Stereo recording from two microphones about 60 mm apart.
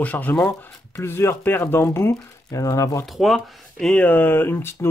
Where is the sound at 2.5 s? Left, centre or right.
Left.